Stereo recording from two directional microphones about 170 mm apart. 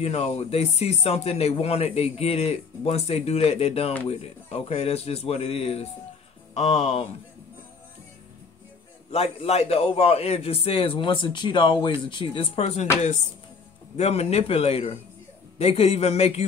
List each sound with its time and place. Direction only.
0.0 s speech: 40° left (ahead or behind)
9.1 s speech: 40° left (ahead or behind)
13.9 s speech: 40° left (ahead or behind)